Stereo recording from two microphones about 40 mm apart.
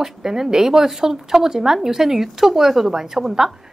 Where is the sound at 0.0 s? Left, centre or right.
Centre.